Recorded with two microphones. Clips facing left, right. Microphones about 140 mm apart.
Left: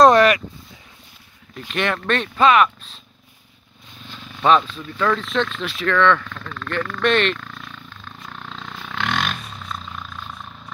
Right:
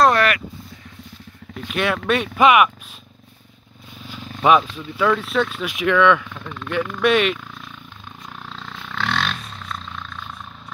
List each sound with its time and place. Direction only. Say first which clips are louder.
0.0 s a sound: left 4 dB; 20° left (ahead or behind)
1.7 s speech: right 1 dB; 5° right (ahead or behind)
4.1 s wild animals: right 1 dB; 10° right (ahead or behind)
4.7 s speech: right 2 dB; 10° right (ahead or behind)
8.2 s wild animals: left 1 dB; 5° right (ahead or behind)